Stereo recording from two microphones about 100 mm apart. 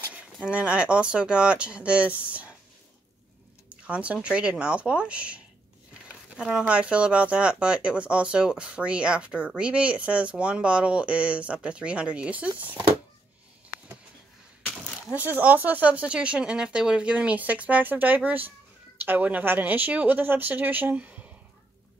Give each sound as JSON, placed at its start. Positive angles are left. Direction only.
{"t": 0.1, "sound": "speech", "side_deg": -15}
{"t": 3.6, "sound": "speech", "side_deg": -10}
{"t": 14.7, "sound": "speech", "side_deg": -10}